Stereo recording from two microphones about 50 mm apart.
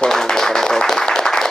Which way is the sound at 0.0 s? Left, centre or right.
Centre.